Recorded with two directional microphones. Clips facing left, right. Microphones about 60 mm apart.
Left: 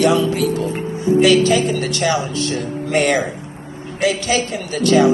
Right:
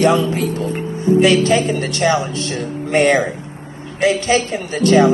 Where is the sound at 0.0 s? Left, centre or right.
Right.